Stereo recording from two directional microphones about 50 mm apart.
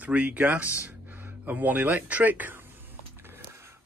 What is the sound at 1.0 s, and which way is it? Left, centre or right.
Speech, right.